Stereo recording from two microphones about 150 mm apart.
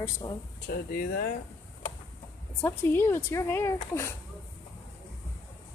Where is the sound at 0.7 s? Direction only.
85° left.